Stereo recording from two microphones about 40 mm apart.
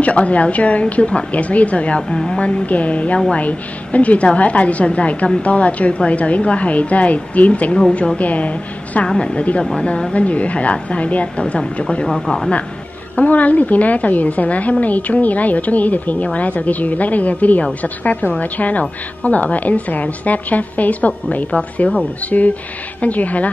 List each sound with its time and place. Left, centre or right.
0.0 s a woman's voice: left
2.0 s speech: centre
2.4 s a woman's voice: left
13.1 s a woman's voice: left
21.5 s a woman's voice: left